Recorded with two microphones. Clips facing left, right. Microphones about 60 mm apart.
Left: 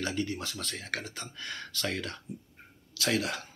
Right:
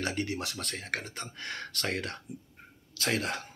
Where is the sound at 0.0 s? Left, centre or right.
Right.